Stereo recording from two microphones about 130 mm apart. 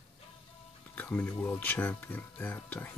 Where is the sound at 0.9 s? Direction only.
10° left (ahead or behind).